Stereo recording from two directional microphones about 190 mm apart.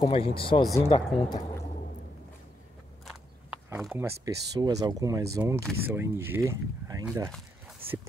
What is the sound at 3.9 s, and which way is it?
Speech, 15° right (ahead or behind).